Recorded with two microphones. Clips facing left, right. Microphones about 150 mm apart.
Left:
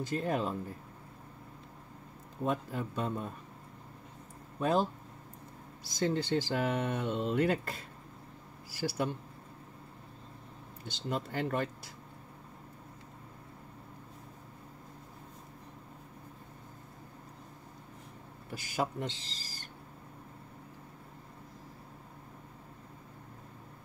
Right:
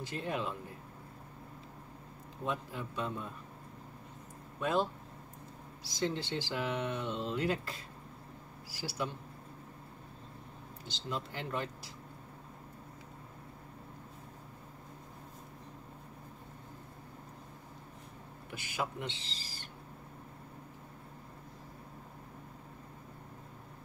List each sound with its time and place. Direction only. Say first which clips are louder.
0.0 s speech: left 5 dB; 45° left (ahead or behind)
2.4 s speech: left 5 dB; 45° left (ahead or behind)
4.6 s speech: left 3 dB; 40° left (ahead or behind)
5.9 s speech: left 4 dB; 45° left (ahead or behind)
10.9 s speech: left 4 dB; 50° left (ahead or behind)
18.5 s speech: left 4 dB; 40° left (ahead or behind)